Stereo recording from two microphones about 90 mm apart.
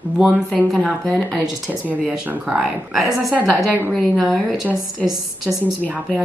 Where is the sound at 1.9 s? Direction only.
15° right (ahead or behind).